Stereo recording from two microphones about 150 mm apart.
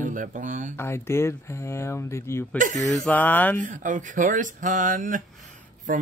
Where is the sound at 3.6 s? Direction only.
60° right (ahead or behind).